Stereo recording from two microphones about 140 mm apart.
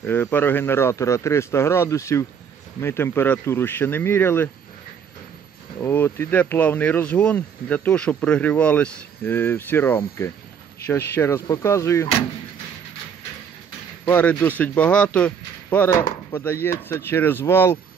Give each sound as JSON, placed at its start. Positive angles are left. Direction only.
{"t": 0.0, "sound": "speech", "side_deg": 15}
{"t": 5.8, "sound": "speech", "side_deg": 15}
{"t": 14.0, "sound": "speech", "side_deg": 15}